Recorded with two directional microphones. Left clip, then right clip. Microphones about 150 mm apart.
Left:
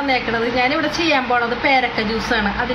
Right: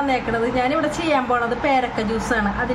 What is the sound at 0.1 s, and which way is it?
A woman's voice, 20° right (ahead or behind).